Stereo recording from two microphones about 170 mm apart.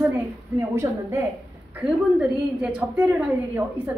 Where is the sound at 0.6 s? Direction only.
15° right (ahead or behind).